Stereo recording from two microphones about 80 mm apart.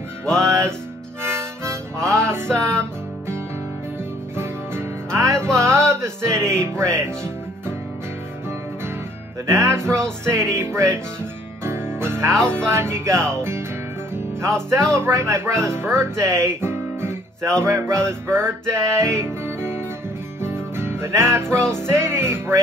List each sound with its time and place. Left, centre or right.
1.2 s harmonica: right
4.4 s music: right
9.5 s speech: right
11.6 s music: right
12.4 s speech: right
19.1 s music: right